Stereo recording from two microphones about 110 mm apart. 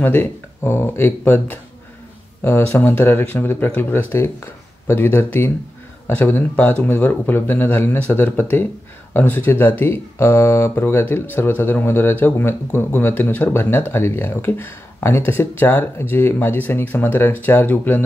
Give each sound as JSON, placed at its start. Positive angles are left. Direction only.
{"t": 0.0, "sound": "speech", "side_deg": 20}